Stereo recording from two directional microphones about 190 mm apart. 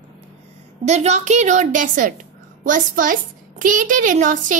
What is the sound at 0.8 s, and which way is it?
A woman's voice, 35° right (ahead or behind).